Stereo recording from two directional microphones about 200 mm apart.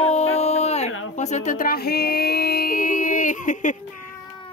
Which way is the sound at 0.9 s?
90° left.